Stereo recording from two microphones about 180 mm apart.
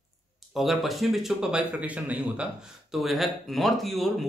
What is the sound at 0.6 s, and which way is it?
Speech, centre (ahead or behind).